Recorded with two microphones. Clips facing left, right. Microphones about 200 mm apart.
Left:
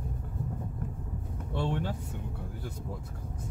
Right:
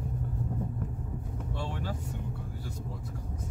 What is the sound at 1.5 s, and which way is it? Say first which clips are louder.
Vehicle: left 7 dB; 60° left (ahead or behind).